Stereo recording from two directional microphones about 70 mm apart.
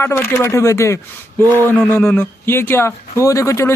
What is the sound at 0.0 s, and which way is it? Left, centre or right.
Speech, left.